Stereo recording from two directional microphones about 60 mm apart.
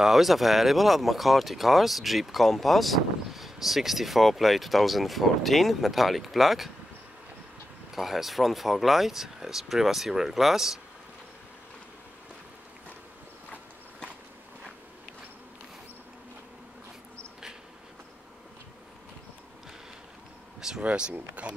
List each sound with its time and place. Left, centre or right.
0.0 s speech: centre
7.9 s speech: centre
20.8 s speech: centre